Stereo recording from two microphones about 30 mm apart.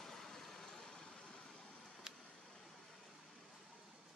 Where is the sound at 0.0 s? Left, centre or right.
Centre.